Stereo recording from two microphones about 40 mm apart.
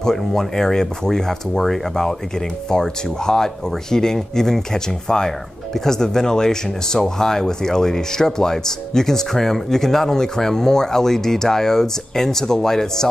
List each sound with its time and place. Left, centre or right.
0.0 s speech: centre